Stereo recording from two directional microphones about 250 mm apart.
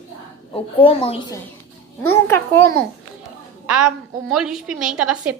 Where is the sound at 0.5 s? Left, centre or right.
Left.